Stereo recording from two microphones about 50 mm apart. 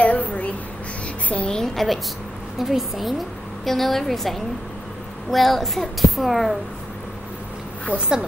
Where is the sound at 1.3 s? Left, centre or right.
Left.